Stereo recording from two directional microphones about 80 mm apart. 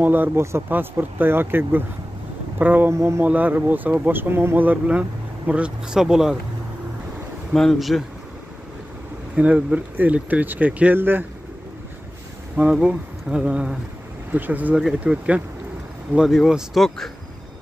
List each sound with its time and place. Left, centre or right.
0.0 s speech: right
2.9 s speech: right
3.3 s speech: right
7.5 s speech: centre
9.3 s speech: centre
12.5 s speech: centre
14.8 s speech: centre